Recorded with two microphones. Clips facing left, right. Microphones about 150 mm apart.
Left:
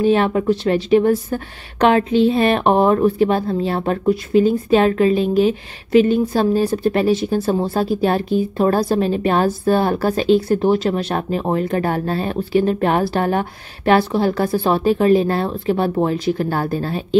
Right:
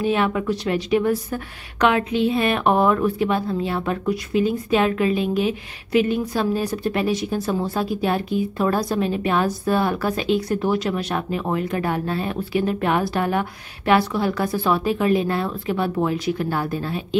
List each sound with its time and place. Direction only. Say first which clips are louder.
0.0 s a woman's voice: left 5 dB; 35° left (ahead or behind)